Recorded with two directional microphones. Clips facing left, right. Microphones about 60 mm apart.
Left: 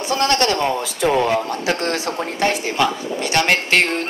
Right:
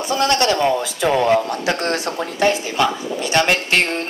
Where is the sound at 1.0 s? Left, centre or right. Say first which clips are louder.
Right 1 dB; right.